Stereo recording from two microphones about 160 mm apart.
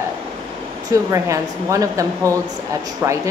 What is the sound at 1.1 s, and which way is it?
Speech, 20° right (ahead or behind).